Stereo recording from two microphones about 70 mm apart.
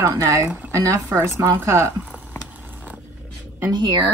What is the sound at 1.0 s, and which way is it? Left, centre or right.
Speech, right.